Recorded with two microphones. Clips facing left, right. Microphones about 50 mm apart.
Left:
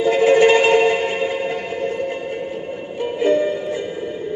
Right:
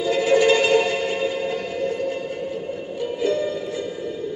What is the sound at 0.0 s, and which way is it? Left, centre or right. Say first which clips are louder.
Music: left 5 dB; left.